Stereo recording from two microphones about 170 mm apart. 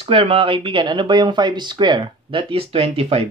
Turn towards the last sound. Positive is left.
turn(degrees=-35)  # may be behind; listen again after turning